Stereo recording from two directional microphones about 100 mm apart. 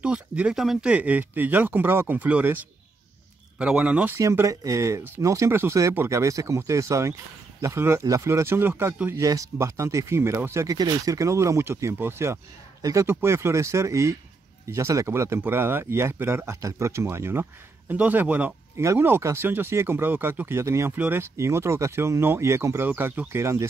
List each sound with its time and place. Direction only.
0.0 s speech: 10° right (ahead or behind)
4.1 s speech: 30° right (ahead or behind)
9.1 s speech: 35° right (ahead or behind)